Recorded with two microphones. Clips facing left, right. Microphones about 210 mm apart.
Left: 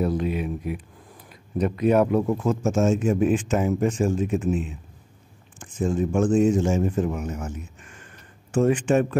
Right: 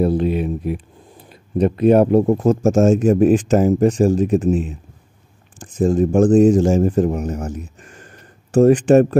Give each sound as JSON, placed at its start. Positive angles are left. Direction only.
{"t": 0.0, "sound": "speech", "side_deg": -30}